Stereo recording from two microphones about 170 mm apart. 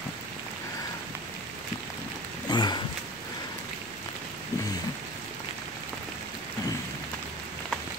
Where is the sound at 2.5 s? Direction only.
25° left (ahead or behind).